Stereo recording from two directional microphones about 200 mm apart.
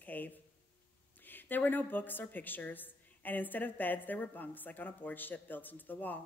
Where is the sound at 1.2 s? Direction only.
10° left (ahead or behind).